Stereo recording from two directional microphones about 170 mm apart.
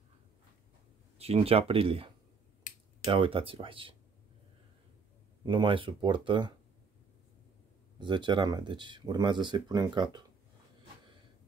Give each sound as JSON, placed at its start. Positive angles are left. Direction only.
{"t": 1.1, "sound": "speech", "side_deg": -35}
{"t": 3.1, "sound": "speech", "side_deg": -30}
{"t": 5.4, "sound": "speech", "side_deg": -30}
{"t": 8.0, "sound": "speech", "side_deg": -25}